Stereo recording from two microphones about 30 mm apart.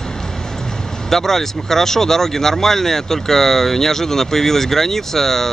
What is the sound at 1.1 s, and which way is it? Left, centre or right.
Speech, centre.